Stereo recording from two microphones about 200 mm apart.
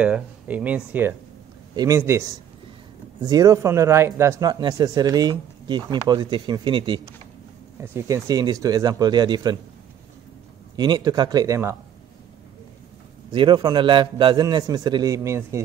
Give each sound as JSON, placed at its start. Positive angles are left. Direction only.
{"t": 0.0, "sound": "speech", "side_deg": -5}
{"t": 10.8, "sound": "speech", "side_deg": -20}
{"t": 13.3, "sound": "speech", "side_deg": -25}